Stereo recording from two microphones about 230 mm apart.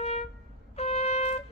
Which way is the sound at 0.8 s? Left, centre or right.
Left.